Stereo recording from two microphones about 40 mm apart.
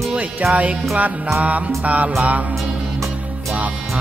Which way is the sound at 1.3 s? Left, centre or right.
Right.